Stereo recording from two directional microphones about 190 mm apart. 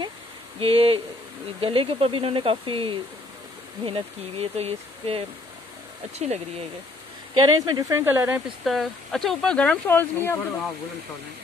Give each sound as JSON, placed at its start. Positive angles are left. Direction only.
{"t": 0.6, "sound": "speech", "side_deg": -30}
{"t": 7.3, "sound": "speech", "side_deg": -20}
{"t": 8.6, "sound": "speech", "side_deg": 0}